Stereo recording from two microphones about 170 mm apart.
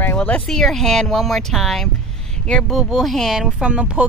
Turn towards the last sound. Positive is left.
turn(degrees=-5)  # may be behind; listen again after turning